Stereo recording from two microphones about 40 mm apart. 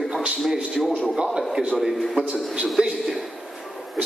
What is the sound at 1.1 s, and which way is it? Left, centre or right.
Speech, centre.